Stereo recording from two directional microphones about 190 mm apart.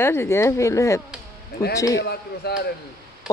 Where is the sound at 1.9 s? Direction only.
60° left (ahead or behind).